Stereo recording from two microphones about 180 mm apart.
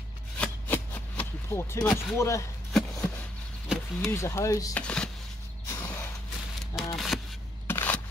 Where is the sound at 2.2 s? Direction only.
15° left (ahead or behind).